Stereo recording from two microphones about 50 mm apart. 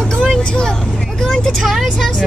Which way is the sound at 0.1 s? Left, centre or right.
Centre.